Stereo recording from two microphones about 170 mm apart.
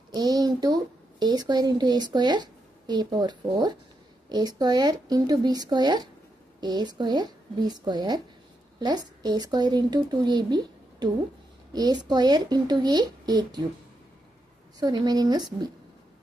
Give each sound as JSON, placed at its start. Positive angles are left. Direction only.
{"t": 0.1, "sound": "a sound", "side_deg": -25}
{"t": 1.2, "sound": "a woman's voice", "side_deg": -25}
{"t": 14.8, "sound": "a woman's voice", "side_deg": -25}